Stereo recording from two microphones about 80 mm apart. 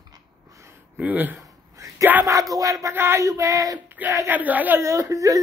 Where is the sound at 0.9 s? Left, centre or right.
Right.